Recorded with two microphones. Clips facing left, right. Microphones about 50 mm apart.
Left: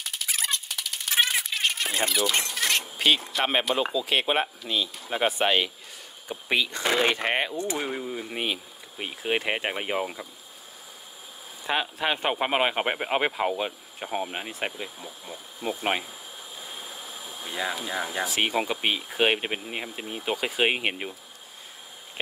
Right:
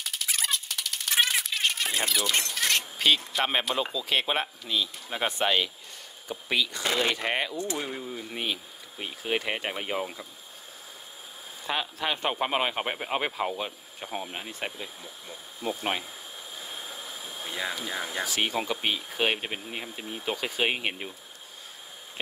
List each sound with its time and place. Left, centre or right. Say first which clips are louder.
0.0 s a sound: even; centre
3.7 s speech: left 3 dB; centre
6.2 s speech: left 2 dB; left
11.6 s speech: left 3 dB; left
17.5 s speech: left 3 dB; left